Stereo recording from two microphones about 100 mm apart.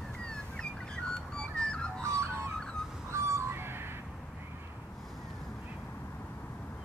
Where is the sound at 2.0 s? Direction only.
30° right (ahead or behind).